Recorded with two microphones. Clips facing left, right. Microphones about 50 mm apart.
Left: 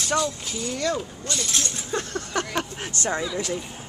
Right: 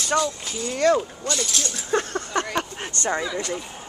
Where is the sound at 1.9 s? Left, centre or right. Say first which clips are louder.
Right 8 dB; right.